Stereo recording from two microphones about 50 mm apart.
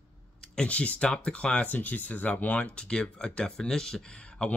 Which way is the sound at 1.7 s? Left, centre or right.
Left.